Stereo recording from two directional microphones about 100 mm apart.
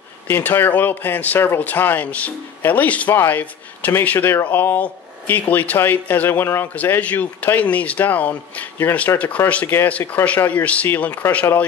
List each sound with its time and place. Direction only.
0.3 s speech: 20° left (ahead or behind)